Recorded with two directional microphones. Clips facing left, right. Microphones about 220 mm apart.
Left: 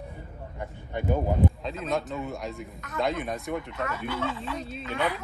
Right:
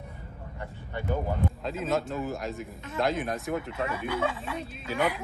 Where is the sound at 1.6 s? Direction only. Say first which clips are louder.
Right 1 dB; centre (ahead or behind).